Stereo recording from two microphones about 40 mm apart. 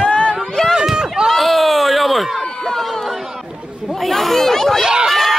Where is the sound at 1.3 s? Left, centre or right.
Centre.